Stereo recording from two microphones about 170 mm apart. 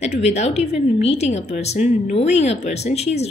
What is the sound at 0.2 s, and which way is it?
Speech, 40° left (ahead or behind).